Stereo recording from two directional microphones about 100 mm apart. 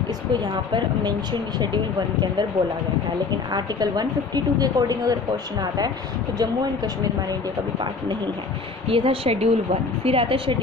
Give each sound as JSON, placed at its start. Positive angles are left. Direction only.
{"t": 3.5, "sound": "a woman's voice", "side_deg": -45}
{"t": 8.8, "sound": "a woman's voice", "side_deg": -65}